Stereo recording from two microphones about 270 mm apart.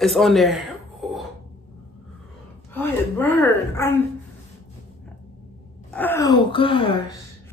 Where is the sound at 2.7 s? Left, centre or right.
Centre.